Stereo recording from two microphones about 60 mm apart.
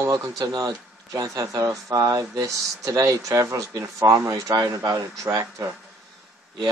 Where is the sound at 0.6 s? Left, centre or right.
Right.